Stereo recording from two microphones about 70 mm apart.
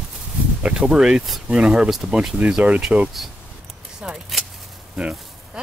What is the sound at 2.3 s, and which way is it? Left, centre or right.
Speech, centre.